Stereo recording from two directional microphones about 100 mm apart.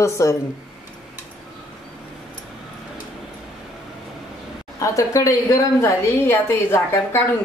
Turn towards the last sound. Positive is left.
turn(degrees=25)  # may be behind; listen again after turning